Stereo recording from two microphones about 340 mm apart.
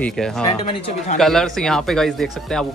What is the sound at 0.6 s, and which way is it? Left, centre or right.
Speech, centre.